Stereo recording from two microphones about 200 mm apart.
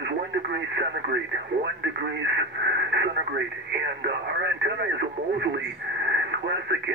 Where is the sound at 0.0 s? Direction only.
60° right (ahead or behind).